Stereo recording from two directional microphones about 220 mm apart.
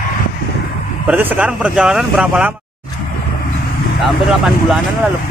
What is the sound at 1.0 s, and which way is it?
Speech, 5° right (ahead or behind).